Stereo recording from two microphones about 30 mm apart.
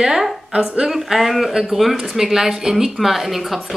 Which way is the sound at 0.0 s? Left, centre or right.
Centre.